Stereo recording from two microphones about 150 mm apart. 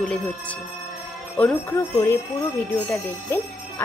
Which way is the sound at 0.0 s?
5° left (ahead or behind).